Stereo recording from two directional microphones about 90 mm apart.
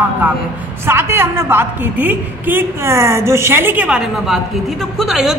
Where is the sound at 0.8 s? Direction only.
25° right (ahead or behind).